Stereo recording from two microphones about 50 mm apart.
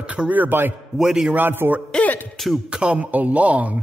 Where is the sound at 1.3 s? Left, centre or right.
Right.